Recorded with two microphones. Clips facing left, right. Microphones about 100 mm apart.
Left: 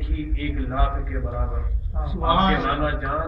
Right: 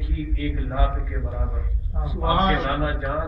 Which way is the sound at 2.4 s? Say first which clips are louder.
Left 1 dB; 15° left (ahead or behind).